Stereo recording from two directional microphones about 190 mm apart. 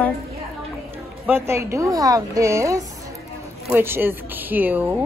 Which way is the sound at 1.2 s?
10° right (ahead or behind).